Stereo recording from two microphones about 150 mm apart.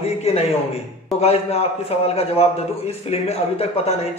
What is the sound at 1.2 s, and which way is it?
A man's voice, 40° left (ahead or behind).